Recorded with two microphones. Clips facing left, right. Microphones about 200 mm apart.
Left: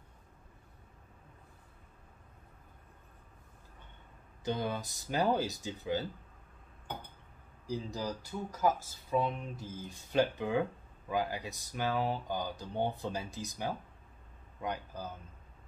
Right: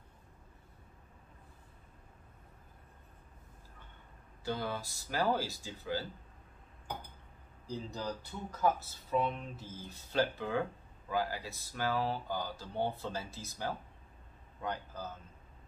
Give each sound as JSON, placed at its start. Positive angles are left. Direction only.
{"t": 4.5, "sound": "speech", "side_deg": 20}
{"t": 7.6, "sound": "speech", "side_deg": 10}